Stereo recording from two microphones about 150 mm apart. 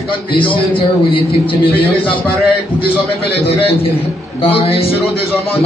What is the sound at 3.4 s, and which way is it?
A man's voice, 40° left (ahead or behind).